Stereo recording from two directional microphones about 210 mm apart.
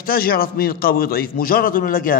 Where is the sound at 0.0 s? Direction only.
45° left (ahead or behind).